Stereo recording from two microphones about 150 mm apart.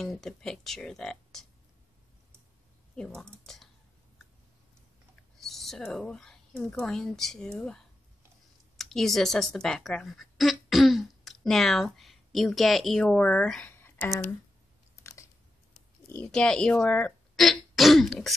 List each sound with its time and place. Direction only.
0.0 s speech: centre (ahead or behind)
3.5 s speech: 5° left (ahead or behind)
5.4 s a woman's voice: centre (ahead or behind)
13.7 s a sound: 15° left (ahead or behind)
15.0 s chewing: 20° left (ahead or behind)
16.1 s speech: 10° left (ahead or behind)